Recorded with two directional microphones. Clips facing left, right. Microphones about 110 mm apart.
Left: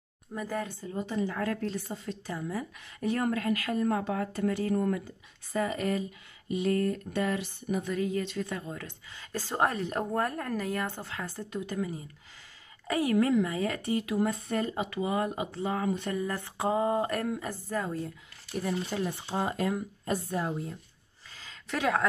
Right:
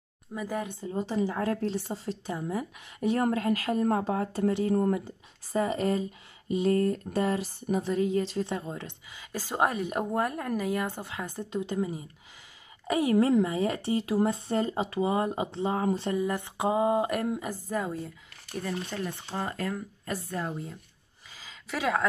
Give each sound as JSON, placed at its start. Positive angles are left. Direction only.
{"t": 0.3, "sound": "a woman's voice", "side_deg": -10}
{"t": 0.9, "sound": "speech", "side_deg": -30}
{"t": 3.3, "sound": "speech", "side_deg": -35}
{"t": 9.1, "sound": "a woman's voice", "side_deg": -10}
{"t": 16.2, "sound": "a woman's voice", "side_deg": -15}
{"t": 18.6, "sound": "speech", "side_deg": 10}
{"t": 21.3, "sound": "a sound", "side_deg": -5}